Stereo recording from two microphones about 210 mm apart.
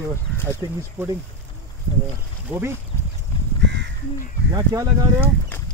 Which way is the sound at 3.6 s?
55° right (ahead or behind).